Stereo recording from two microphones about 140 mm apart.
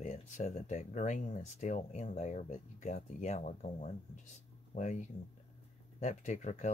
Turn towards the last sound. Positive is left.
turn(degrees=60)  # may be behind; listen again after turning